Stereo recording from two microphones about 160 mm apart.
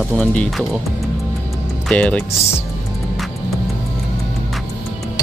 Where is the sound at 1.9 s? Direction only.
10° left (ahead or behind).